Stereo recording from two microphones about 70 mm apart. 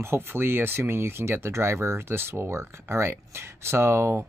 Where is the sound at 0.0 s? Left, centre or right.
Right.